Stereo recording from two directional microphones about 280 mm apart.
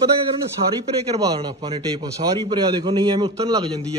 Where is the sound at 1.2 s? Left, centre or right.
Centre.